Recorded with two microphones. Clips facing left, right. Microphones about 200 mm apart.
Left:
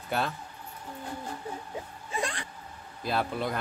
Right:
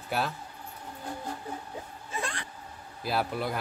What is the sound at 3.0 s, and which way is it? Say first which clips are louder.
Speech: even; 5° right (ahead or behind).